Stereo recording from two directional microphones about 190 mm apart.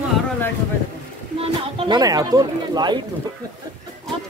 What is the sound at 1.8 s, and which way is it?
Speech, 20° right (ahead or behind).